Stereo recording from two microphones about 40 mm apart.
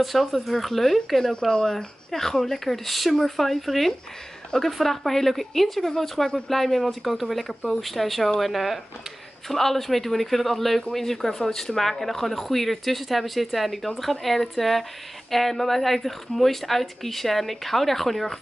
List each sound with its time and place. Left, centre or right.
0.0 s speech: centre